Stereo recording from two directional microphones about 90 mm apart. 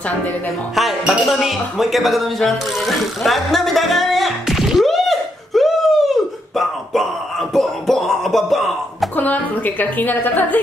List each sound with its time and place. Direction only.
0.7 s speech: centre (ahead or behind)
6.5 s a sound: centre (ahead or behind)
9.1 s a woman's voice: 20° left (ahead or behind)